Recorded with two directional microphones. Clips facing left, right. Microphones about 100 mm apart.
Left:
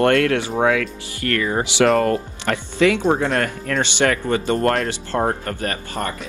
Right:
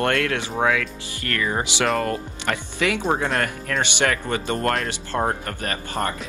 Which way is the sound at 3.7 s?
40° left (ahead or behind).